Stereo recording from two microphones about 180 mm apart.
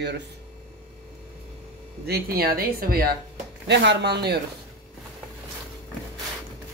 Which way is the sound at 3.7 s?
70° right (ahead or behind).